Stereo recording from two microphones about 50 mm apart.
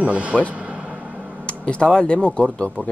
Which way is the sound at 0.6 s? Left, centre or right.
Centre.